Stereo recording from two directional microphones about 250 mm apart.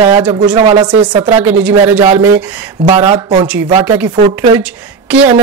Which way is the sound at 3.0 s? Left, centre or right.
Centre.